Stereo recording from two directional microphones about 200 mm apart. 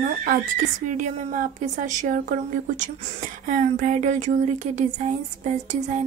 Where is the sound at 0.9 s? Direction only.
40° right (ahead or behind).